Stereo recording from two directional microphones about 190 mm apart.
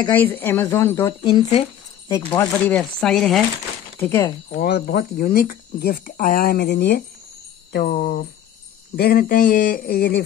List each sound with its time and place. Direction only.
0.0 s speech: 10° left (ahead or behind)
2.1 s speech: 10° left (ahead or behind)
4.0 s speech: 15° left (ahead or behind)
4.5 s speech: 55° left (ahead or behind)